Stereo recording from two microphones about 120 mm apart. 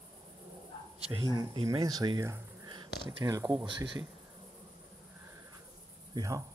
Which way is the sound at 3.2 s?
25° right (ahead or behind).